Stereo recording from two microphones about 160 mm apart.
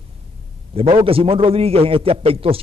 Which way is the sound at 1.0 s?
35° right (ahead or behind).